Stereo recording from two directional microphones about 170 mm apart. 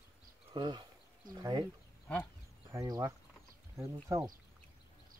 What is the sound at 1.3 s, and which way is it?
Speech, 20° right (ahead or behind).